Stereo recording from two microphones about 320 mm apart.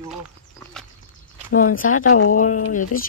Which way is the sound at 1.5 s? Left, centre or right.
Left.